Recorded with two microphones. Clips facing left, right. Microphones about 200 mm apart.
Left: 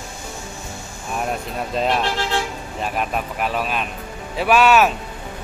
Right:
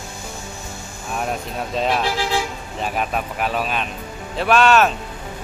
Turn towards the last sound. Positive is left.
turn(degrees=5)  # may be behind; listen again after turning